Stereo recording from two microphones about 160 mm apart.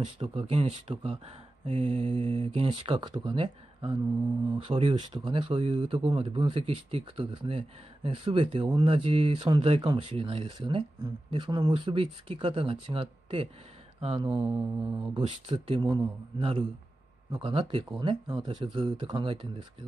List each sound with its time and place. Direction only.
0.0 s speech: 35° right (ahead or behind)
14.8 s mantra: 10° right (ahead or behind)
15.1 s speech: 30° right (ahead or behind)